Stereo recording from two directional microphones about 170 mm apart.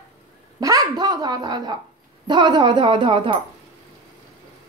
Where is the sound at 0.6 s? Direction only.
20° right (ahead or behind).